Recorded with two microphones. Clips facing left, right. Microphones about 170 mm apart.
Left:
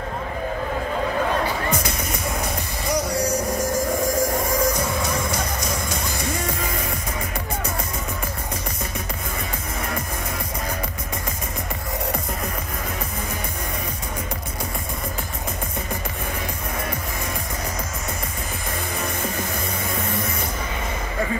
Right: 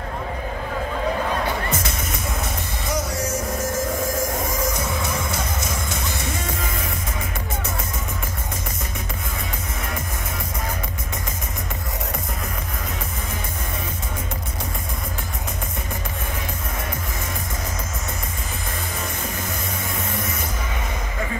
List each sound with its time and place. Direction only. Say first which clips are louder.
1.7 s music: left 2 dB; 25° right (ahead or behind)
3.2 s music: left 3 dB; 5° right (ahead or behind)
4.5 s music: left 3 dB; 25° right (ahead or behind)